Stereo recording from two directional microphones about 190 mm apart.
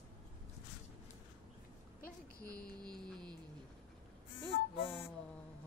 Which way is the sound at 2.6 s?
5° left (ahead or behind).